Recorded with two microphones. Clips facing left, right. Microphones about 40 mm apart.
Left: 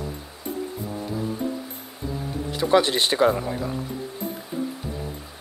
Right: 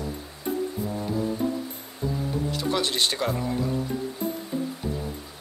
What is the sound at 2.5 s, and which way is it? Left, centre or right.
Speech, centre.